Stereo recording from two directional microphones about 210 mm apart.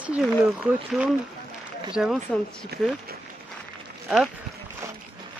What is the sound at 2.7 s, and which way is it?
Speech, 50° right (ahead or behind).